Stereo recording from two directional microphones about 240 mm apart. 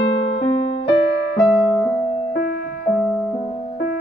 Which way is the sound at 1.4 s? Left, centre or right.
Centre.